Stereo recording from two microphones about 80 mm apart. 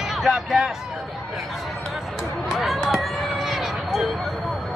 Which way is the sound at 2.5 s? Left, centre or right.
Centre.